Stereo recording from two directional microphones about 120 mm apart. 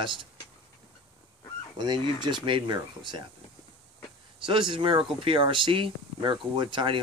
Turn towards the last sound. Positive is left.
turn(degrees=-40)  # may be behind; listen again after turning